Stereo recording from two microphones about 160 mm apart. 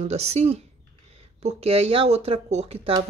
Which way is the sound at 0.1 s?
40° right (ahead or behind).